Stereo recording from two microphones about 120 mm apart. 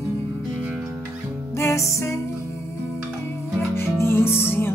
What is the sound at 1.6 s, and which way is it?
Music, 25° left (ahead or behind).